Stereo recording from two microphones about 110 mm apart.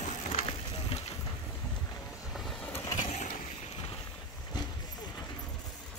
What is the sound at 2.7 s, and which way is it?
Vehicle, 30° left (ahead or behind).